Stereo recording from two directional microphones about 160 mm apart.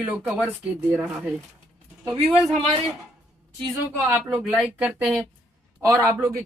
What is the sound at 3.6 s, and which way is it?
A woman's voice, 5° right (ahead or behind).